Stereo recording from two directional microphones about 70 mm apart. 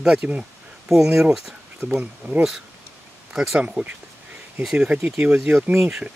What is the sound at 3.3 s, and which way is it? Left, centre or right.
Speech, centre.